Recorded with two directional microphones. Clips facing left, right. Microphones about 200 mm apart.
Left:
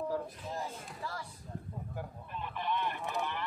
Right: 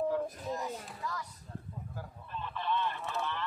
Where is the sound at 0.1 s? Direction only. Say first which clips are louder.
Right 3 dB; 30° left (ahead or behind).